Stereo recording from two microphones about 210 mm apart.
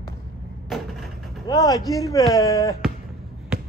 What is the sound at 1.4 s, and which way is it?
Speech, 15° left (ahead or behind).